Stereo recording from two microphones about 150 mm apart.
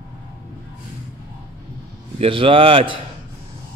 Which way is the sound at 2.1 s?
35° right (ahead or behind).